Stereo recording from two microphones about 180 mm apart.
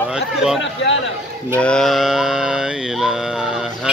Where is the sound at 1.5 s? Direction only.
5° left (ahead or behind).